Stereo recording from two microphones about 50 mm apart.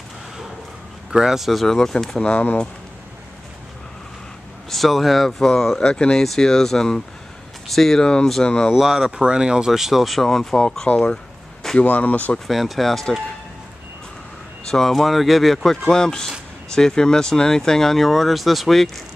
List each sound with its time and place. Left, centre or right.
1.1 s speech: centre
2.1 s speech: left
4.6 s speech: centre
8.0 s speech: centre
8.7 s speech: centre
9.1 s speech: centre
9.7 s speech: centre; by 11.1 s left
11.8 s speech: left
12.4 s speech: centre
14.7 s speech: centre